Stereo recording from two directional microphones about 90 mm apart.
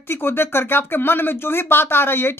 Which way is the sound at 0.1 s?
25° left (ahead or behind).